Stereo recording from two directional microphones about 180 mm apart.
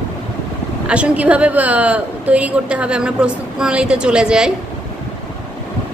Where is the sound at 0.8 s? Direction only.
5° right (ahead or behind).